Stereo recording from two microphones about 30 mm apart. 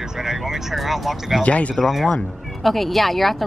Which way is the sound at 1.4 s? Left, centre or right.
Left.